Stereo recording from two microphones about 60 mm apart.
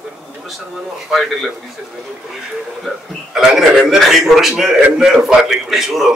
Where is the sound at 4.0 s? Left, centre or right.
Centre.